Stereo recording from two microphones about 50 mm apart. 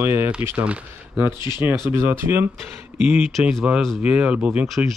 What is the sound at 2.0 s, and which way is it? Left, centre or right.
Speech, right.